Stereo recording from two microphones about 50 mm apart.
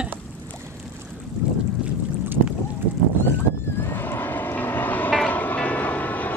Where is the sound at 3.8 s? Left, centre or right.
Left.